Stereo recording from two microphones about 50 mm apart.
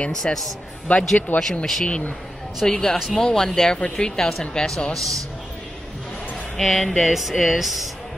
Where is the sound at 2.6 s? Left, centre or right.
Centre.